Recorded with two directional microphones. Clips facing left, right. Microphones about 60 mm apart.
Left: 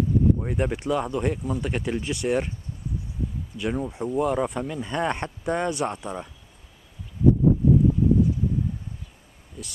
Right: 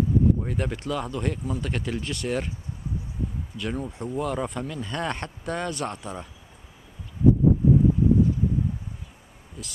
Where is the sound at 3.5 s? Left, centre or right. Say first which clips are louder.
Left 5 dB; centre.